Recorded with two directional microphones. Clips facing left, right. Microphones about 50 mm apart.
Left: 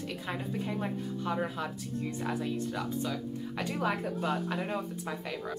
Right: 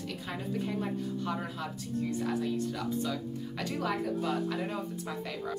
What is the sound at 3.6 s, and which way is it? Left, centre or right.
Speech, left.